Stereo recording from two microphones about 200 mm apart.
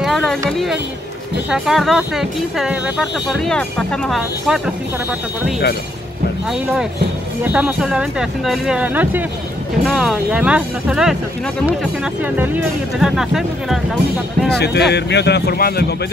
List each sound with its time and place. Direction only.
0.0 s a sound: centre (ahead or behind)
0.5 s speech: centre (ahead or behind)
6.5 s speech: centre (ahead or behind)
14.6 s speech: 55° left (ahead or behind)